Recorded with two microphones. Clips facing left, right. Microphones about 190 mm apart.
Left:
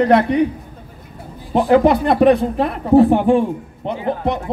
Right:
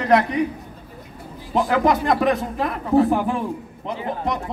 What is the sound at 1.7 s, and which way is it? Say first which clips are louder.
Speech: left 7 dB; 30° left (ahead or behind).